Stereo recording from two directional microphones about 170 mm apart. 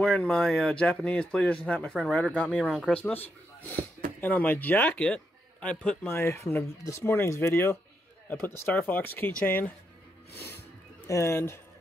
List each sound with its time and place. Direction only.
0.0 s speech: 5° left (ahead or behind)
4.2 s a man's voice: 10° left (ahead or behind)
10.3 s speech: 70° left (ahead or behind)
11.1 s a man's voice: 15° left (ahead or behind)